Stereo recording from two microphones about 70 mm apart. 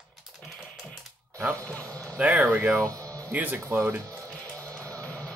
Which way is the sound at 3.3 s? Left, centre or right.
Right.